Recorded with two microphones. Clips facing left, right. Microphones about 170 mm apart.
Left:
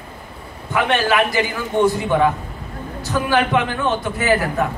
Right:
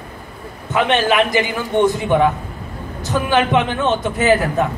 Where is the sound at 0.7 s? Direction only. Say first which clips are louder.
Right 2 dB; 20° right (ahead or behind).